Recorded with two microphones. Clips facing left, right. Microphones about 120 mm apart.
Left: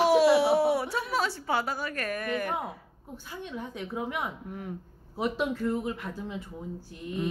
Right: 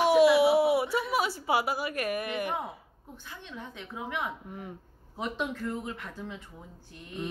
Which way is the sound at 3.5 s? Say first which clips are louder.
Left 6 dB; 10° left (ahead or behind).